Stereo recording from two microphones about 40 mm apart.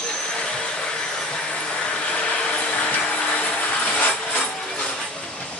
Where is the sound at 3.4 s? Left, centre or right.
Left.